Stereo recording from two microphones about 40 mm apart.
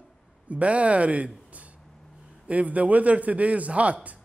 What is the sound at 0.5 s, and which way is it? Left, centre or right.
Speech, right.